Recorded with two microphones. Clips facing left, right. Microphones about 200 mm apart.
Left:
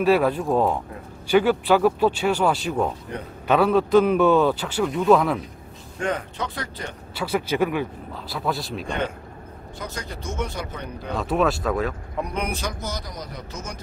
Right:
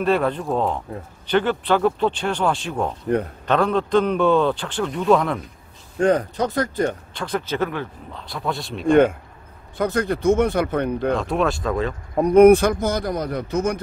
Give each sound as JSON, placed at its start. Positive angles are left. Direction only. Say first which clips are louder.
{"t": 0.0, "sound": "a man's voice", "louder": "left 1 dB", "side_deg": 5}
{"t": 5.9, "sound": "speech", "louder": "right 8 dB", "side_deg": -35}
{"t": 7.2, "sound": "a man's voice", "louder": "left 3 dB", "side_deg": 10}
{"t": 9.8, "sound": "speech", "louder": "right 13 dB", "side_deg": -55}
{"t": 11.1, "sound": "a man's voice", "louder": "even", "side_deg": 0}
{"t": 12.2, "sound": "speech", "louder": "right 17 dB", "side_deg": -50}